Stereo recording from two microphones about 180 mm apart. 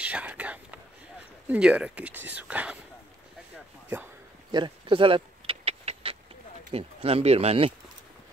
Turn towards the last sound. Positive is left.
turn(degrees=-35)  # may be behind; listen again after turning